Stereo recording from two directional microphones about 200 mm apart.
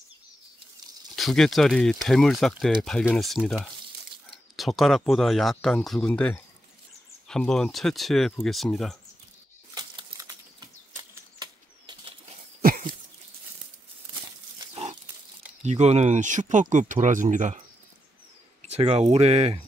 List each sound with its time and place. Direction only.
1.1 s speech: centre (ahead or behind)
9.8 s a sound: 20° right (ahead or behind)
11.3 s bird flight: 20° right (ahead or behind)
12.6 s a sound: 45° right (ahead or behind)
14.7 s pig: 30° right (ahead or behind)
15.6 s speech: 35° right (ahead or behind)
18.6 s speech: 30° right (ahead or behind)